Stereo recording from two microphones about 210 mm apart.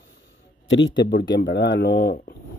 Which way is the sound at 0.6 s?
60° left (ahead or behind).